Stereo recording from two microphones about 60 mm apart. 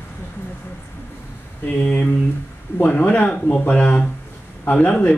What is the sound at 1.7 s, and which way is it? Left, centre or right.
Speech, left.